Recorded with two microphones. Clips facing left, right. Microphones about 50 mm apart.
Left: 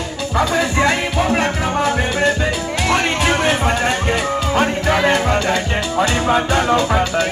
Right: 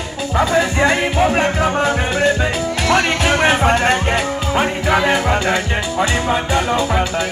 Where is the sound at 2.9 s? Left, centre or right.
Right.